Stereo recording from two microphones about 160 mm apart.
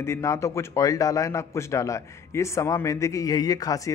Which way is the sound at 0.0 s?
15° left (ahead or behind).